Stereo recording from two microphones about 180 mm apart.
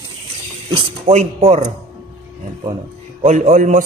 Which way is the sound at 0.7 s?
35° right (ahead or behind).